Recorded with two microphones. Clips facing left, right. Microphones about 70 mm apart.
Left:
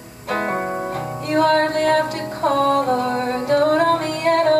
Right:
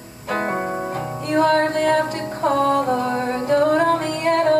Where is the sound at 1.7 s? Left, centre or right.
Left.